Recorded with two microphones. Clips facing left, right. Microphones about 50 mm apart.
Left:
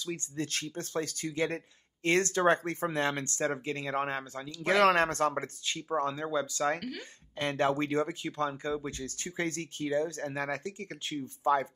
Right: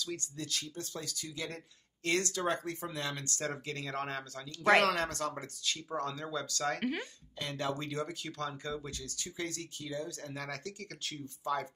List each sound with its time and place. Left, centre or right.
0.0 s speech: left
4.5 s speech: right
4.8 s speech: left
6.8 s speech: right
7.3 s speech: left